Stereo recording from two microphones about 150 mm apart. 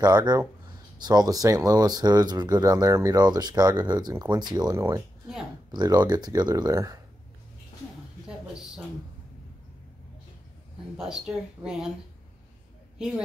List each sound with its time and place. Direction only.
0.0 s speech: 25° right (ahead or behind)
11.0 s speech: 5° right (ahead or behind)